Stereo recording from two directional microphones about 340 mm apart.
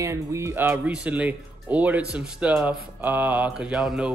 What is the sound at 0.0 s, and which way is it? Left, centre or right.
Speech, centre.